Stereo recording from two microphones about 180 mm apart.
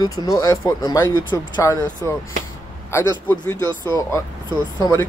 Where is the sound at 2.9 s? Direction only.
10° left (ahead or behind).